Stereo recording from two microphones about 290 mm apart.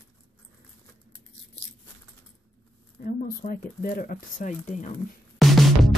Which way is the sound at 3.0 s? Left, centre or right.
Left.